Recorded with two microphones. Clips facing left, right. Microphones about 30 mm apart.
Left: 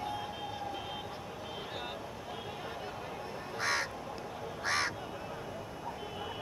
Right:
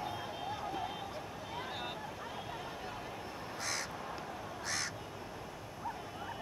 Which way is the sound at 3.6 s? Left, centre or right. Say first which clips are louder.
Left 7 dB; left.